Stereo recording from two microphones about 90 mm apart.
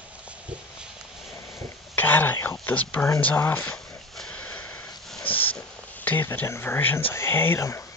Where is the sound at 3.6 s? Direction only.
10° left (ahead or behind).